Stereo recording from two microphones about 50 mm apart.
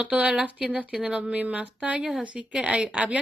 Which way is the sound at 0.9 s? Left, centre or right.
Centre.